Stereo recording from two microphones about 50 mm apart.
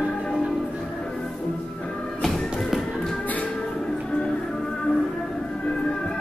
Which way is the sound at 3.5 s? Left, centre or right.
Centre.